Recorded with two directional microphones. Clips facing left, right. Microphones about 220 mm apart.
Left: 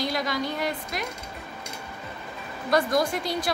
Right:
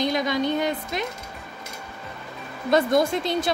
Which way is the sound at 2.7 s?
25° right (ahead or behind).